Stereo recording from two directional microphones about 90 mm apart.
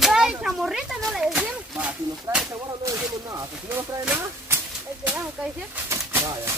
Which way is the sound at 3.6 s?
25° right (ahead or behind).